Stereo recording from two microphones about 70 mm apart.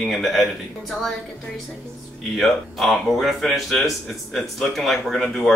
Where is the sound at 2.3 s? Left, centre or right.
Centre.